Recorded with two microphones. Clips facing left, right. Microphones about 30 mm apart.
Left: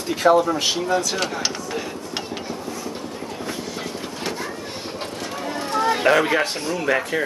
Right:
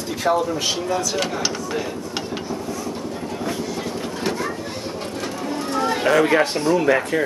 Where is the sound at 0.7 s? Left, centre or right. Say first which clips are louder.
Left 1 dB; centre.